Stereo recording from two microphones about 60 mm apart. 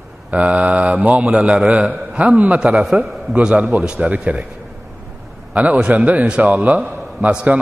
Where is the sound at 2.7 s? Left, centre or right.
Centre.